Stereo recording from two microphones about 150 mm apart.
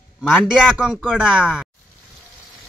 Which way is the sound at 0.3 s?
5° right (ahead or behind).